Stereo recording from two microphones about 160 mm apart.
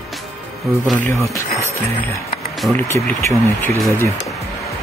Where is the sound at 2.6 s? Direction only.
10° left (ahead or behind).